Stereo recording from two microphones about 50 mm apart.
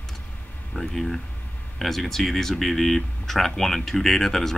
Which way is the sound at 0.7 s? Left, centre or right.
Centre.